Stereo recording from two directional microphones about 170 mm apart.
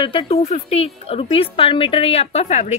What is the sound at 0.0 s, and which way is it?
A woman's voice, 30° left (ahead or behind).